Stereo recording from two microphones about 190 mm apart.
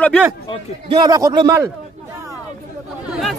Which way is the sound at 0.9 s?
20° right (ahead or behind).